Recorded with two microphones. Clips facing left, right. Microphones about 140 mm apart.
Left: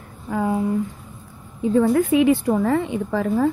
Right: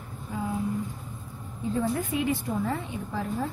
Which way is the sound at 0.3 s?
70° left (ahead or behind).